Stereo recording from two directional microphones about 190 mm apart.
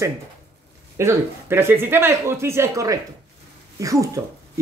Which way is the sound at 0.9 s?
15° right (ahead or behind).